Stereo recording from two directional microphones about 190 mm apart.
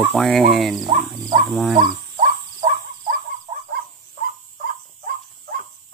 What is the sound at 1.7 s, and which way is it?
Cricket, 40° right (ahead or behind).